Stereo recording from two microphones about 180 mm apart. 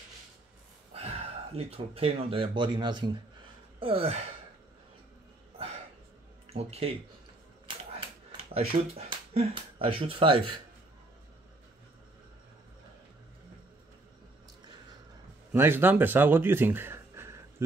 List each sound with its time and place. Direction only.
0.9 s speech: 35° right (ahead or behind)
6.5 s speech: 35° right (ahead or behind)
8.0 s speech: 30° right (ahead or behind)
15.5 s speech: 10° right (ahead or behind)